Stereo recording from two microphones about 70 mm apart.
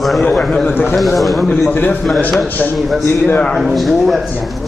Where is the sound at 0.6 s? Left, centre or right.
Left.